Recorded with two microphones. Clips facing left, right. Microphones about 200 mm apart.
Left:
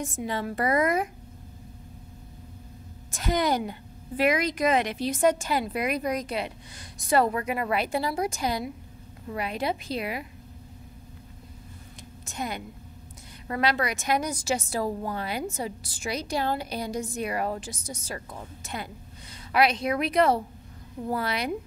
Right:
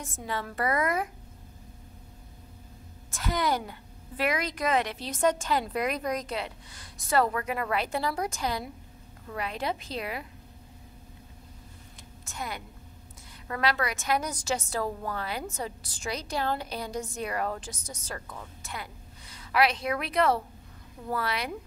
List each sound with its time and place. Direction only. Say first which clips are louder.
0.0 s a woman's voice: left 5 dB; 15° left (ahead or behind)
3.1 s a woman's voice: left 3 dB; 20° left (ahead or behind)
12.3 s a woman's voice: left 4 dB; 20° left (ahead or behind)
18.3 s a woman's voice: left 4 dB; 25° left (ahead or behind)